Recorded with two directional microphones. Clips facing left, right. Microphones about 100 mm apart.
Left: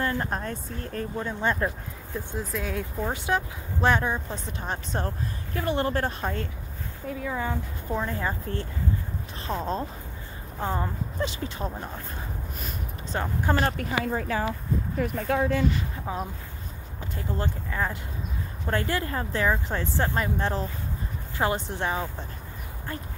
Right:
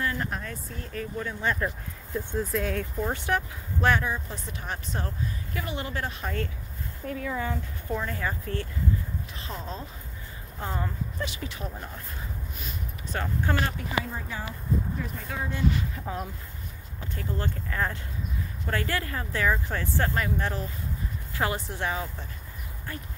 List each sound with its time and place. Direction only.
0.0 s speech: 35° left (ahead or behind)
1.2 s speech: 25° left (ahead or behind)
2.1 s speech: centre (ahead or behind)
2.7 s speech: 15° left (ahead or behind); by 6.3 s 40° left (ahead or behind)
7.1 s speech: 15° left (ahead or behind)
9.5 s speech: 45° left (ahead or behind)
10.6 s speech: 25° left (ahead or behind)
13.1 s speech: 25° left (ahead or behind)
13.7 s speech: 70° left (ahead or behind)
15.0 s speech: 65° left (ahead or behind)
16.1 s speech: 15° left (ahead or behind)